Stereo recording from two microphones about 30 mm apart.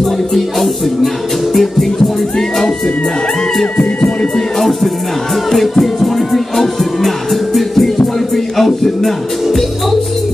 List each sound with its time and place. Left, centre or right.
0.0 s music: centre
3.7 s music: left
4.6 s music: centre
8.5 s speech: centre